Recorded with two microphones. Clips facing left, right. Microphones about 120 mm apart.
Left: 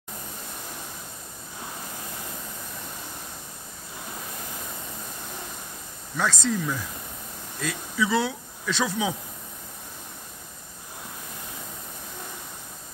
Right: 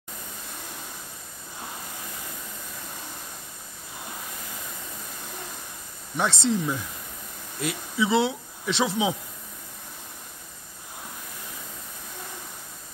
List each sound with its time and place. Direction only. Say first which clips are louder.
6.1 s speech: right 1 dB; 25° right (ahead or behind)